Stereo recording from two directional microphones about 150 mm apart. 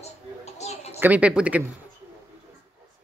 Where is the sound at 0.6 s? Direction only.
45° left (ahead or behind).